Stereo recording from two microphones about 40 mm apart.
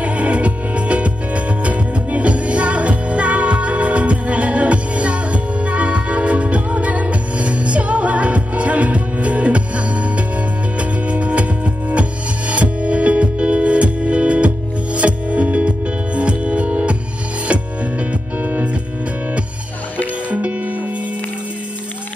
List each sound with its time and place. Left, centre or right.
0.0 s music: right
18.4 s music: right
20.2 s music: right